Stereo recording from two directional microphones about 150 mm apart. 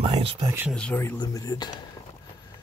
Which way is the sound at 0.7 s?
10° left (ahead or behind).